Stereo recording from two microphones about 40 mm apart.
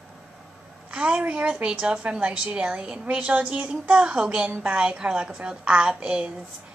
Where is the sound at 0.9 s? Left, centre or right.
Right.